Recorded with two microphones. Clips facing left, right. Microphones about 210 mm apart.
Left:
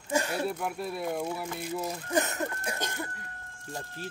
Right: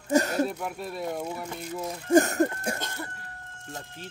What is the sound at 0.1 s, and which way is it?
Speech, 40° right (ahead or behind).